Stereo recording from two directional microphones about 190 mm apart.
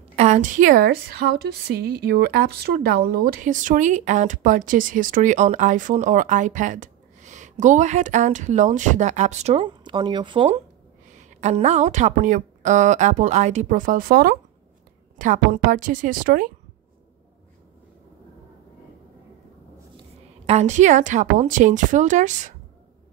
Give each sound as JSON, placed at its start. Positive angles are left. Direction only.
{"t": 0.1, "sound": "a woman's voice", "side_deg": -35}
{"t": 11.1, "sound": "a woman's voice", "side_deg": -40}
{"t": 20.4, "sound": "a woman's voice", "side_deg": -35}